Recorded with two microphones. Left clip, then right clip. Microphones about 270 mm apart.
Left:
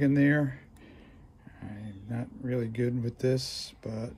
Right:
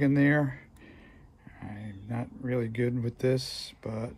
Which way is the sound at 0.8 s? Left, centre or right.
Right.